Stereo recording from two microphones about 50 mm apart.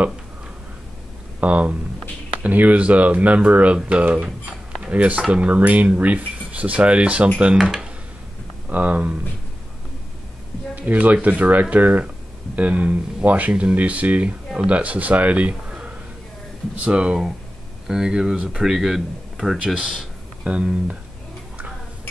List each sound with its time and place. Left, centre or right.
1.4 s cutlery: right
2.4 s speech: right
4.0 s cutlery: right
4.8 s speech: right
5.2 s cutlery: right
7.6 s speech: centre
8.6 s speech: right
10.8 s speech: right
12.5 s cutlery: right
13.7 s speech: right
16.8 s cutlery: right
17.8 s speech: centre
18.6 s speech: centre
20.4 s cutlery: right